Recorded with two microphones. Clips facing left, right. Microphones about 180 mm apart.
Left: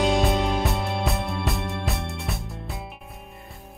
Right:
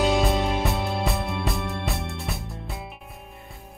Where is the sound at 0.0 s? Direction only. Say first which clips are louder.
Even; centre (ahead or behind).